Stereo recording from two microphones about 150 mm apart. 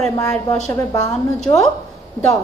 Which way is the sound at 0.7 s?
20° left (ahead or behind).